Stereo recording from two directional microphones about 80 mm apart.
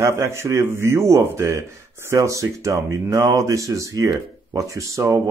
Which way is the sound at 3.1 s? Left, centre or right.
Right.